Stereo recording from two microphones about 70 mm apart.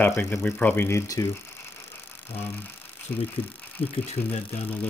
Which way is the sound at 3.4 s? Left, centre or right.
Left.